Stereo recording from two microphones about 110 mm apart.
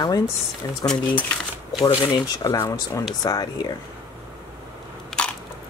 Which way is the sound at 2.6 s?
40° left (ahead or behind).